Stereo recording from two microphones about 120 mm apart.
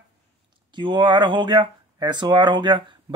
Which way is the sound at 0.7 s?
40° right (ahead or behind).